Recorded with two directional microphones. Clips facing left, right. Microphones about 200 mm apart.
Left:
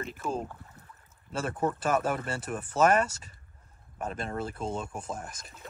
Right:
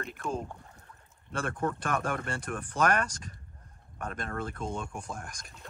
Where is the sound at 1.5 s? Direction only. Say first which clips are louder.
Left 3 dB; 20° left (ahead or behind).